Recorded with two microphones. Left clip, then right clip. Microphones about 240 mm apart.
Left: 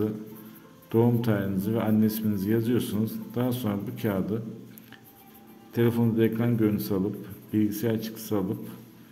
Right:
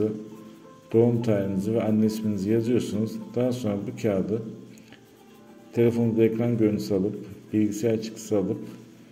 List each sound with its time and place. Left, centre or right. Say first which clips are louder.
0.9 s speech: right 3 dB; centre
5.7 s speech: right 3 dB; centre